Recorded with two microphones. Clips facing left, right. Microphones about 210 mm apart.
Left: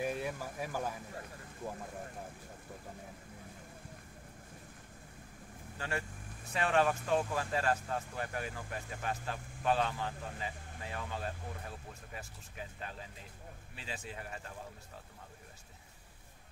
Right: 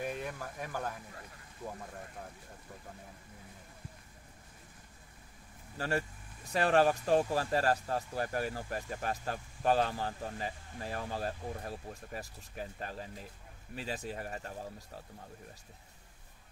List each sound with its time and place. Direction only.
0.0 s speech: 5° left (ahead or behind)
5.8 s speech: 40° right (ahead or behind)